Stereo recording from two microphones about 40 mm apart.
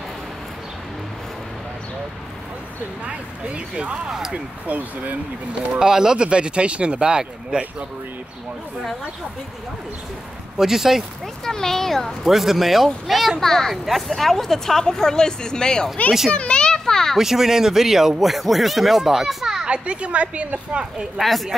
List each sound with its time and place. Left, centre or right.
3.1 s a woman's voice: right
4.3 s speech: right
5.5 s a woman's voice: right
10.6 s speech: centre
11.4 s speech: centre
12.3 s speech: centre
16.3 s children playing: left
17.2 s speech: centre
19.6 s a woman's voice: right